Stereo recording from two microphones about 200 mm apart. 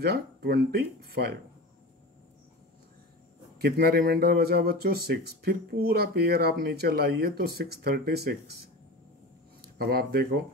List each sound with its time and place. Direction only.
0.0 s speech: 55° right (ahead or behind)
3.5 s speech: 55° right (ahead or behind)
9.6 s speech: 50° right (ahead or behind)